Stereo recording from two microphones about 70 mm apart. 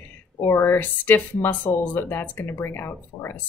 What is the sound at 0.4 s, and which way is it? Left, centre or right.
Speech, left.